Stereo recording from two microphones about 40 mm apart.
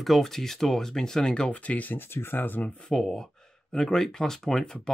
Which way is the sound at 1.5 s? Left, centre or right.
Left.